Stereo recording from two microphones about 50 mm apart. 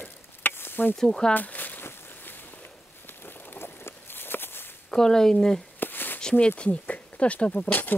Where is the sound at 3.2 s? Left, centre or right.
Left.